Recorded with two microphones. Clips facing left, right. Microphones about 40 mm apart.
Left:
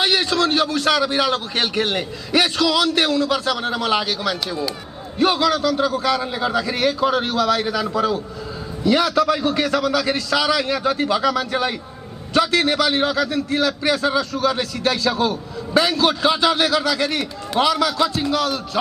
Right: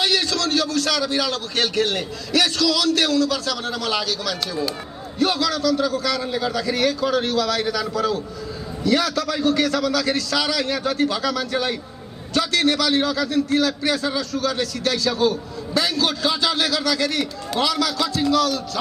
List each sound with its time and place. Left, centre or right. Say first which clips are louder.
0.0 s a man's voice: left 3 dB; left